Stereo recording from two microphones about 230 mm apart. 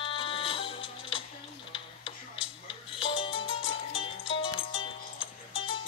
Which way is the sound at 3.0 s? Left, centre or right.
Left.